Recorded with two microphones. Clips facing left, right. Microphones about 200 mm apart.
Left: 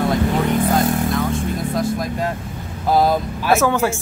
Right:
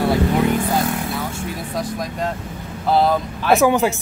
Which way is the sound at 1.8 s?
5° left (ahead or behind).